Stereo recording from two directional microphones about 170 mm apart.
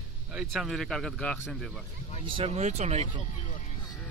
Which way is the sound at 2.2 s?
35° right (ahead or behind).